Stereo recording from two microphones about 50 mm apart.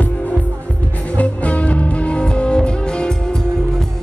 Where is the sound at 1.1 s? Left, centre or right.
Left.